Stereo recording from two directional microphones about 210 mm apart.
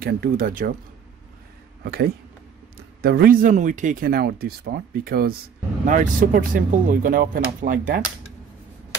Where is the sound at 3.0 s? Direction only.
45° right (ahead or behind).